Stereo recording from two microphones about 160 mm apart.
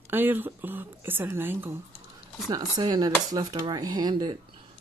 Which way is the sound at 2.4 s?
25° right (ahead or behind).